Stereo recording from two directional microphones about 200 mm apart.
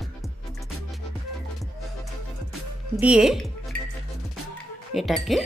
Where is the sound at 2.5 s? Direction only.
5° right (ahead or behind).